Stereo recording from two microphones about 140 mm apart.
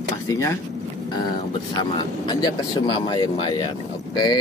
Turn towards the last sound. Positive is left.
turn(degrees=30)  # may be behind; listen again after turning